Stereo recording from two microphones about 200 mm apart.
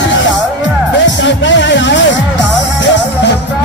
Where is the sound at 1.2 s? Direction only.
65° left (ahead or behind).